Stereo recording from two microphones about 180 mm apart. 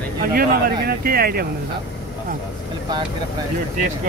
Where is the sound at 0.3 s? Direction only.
55° right (ahead or behind).